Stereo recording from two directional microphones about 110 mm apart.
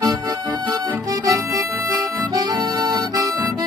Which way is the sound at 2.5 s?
40° right (ahead or behind).